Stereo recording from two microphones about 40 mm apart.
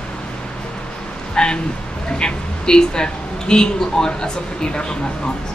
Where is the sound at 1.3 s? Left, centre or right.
Centre.